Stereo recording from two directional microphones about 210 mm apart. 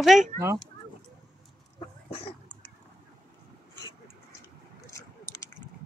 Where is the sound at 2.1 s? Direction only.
25° left (ahead or behind).